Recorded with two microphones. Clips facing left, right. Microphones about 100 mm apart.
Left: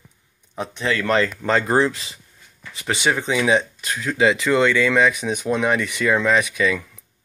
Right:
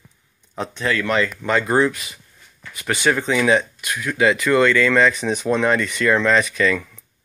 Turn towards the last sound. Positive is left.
turn(degrees=10)  # may be behind; listen again after turning